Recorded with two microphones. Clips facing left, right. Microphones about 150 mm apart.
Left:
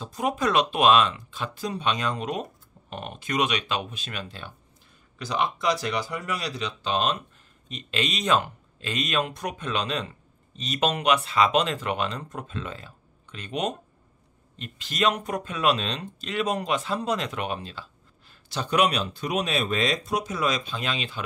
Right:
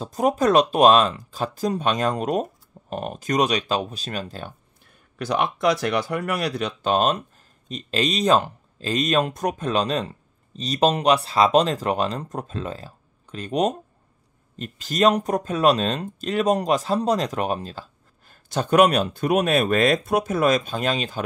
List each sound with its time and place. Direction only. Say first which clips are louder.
0.0 s speech: right 6 dB; 40° right (ahead or behind)
5.2 s speech: right 5 dB; 60° right (ahead or behind)